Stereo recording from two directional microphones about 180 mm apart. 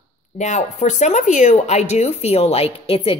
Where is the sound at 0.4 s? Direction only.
40° left (ahead or behind).